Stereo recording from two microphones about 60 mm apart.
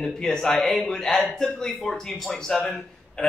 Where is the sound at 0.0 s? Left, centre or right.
Centre.